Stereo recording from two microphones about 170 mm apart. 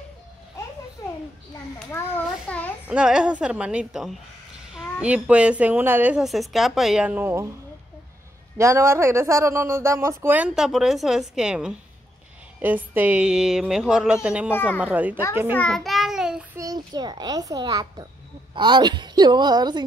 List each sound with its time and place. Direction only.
2.4 s a sound: 10° left (ahead or behind)
2.9 s speech: 5° right (ahead or behind)
8.5 s speech: 15° right (ahead or behind)
14.5 s a child's voice: 10° left (ahead or behind)
14.8 s speech: 10° right (ahead or behind)
15.5 s child singing: 5° left (ahead or behind)
16.5 s a child's voice: 20° right (ahead or behind)